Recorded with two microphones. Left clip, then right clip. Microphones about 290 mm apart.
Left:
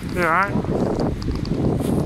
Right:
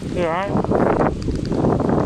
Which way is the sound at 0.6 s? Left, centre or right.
Right.